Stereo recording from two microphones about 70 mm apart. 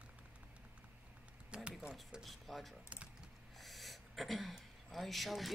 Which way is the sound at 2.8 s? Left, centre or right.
Centre.